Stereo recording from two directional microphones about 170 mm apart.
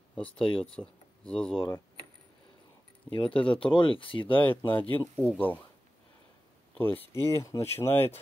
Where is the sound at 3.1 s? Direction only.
30° left (ahead or behind).